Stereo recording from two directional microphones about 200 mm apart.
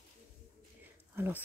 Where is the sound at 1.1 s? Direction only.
10° right (ahead or behind).